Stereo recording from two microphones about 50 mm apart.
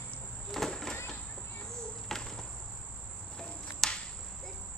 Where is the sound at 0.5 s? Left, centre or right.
Centre.